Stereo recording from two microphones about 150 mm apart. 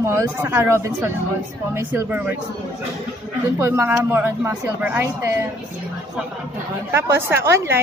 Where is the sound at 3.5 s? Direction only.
15° right (ahead or behind).